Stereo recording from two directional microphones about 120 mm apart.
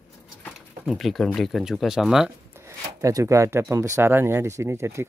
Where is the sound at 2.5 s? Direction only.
25° right (ahead or behind).